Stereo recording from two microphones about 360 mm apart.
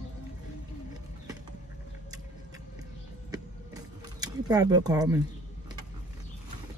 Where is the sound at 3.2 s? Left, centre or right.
Centre.